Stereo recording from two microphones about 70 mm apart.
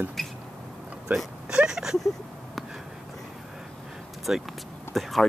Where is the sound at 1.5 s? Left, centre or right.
Centre.